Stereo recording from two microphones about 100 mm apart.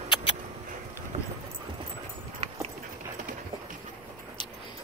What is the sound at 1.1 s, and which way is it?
Vehicle, 90° right.